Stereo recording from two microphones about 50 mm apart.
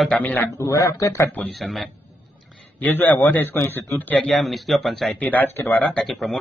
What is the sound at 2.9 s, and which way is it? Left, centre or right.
Speech, left.